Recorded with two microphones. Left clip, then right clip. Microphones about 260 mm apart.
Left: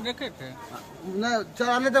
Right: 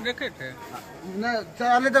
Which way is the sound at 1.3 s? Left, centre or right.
Left.